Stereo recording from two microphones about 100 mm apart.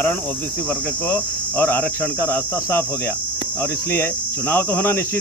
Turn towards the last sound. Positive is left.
turn(degrees=20)  # may be behind; listen again after turning